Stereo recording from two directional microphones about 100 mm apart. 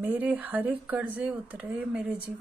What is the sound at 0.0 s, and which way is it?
Speech, 20° right (ahead or behind).